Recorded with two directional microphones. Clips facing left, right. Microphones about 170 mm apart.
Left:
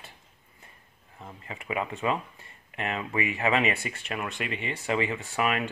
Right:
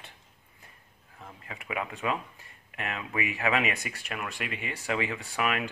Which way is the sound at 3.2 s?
35° left (ahead or behind).